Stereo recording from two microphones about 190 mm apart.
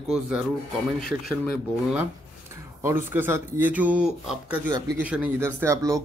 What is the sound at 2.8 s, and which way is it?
Speech, 10° right (ahead or behind).